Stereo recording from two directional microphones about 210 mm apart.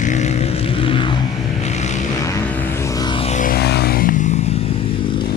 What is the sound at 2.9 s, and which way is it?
Music, 20° left (ahead or behind).